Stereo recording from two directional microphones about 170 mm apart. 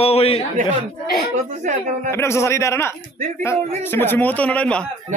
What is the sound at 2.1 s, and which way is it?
A man's voice, 15° left (ahead or behind).